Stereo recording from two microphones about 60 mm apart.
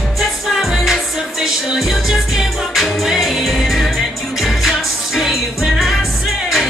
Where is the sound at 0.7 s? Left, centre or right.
Centre.